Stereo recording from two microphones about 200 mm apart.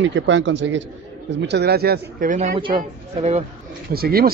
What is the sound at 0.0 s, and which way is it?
Speech, 65° right (ahead or behind).